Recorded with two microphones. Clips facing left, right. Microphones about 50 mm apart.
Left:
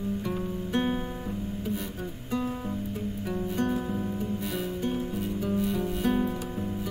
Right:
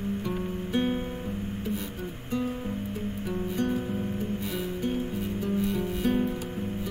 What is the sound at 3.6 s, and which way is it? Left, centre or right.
Music, centre.